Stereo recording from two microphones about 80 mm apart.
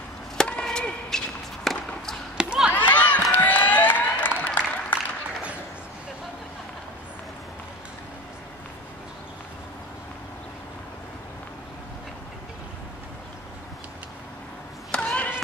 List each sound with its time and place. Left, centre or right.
0.4 s chop: centre
2.3 s chop: centre
2.9 s run: left
4.5 s applause: left
14.9 s a sound: centre